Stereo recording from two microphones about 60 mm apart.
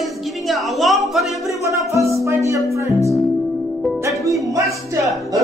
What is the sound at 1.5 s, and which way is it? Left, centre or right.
Music, right.